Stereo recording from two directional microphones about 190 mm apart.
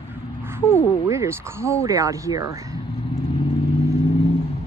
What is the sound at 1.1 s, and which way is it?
Speech, 15° right (ahead or behind).